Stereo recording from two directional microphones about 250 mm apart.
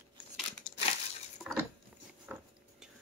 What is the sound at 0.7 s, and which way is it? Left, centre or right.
Crumpling, left.